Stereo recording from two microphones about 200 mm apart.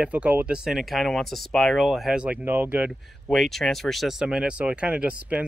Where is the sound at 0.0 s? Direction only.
5° right (ahead or behind).